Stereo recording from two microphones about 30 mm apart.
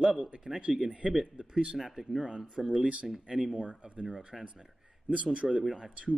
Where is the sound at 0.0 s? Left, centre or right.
Right.